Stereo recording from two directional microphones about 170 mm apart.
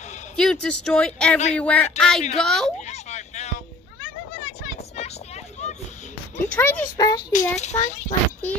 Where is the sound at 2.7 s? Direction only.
40° left (ahead or behind).